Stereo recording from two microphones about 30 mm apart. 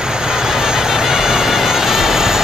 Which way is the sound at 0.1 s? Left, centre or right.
Right.